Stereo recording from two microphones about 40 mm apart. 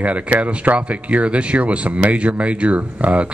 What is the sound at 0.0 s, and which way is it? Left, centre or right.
Speech, right.